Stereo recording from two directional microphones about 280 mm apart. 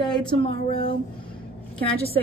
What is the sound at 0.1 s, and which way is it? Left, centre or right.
A woman's voice, centre.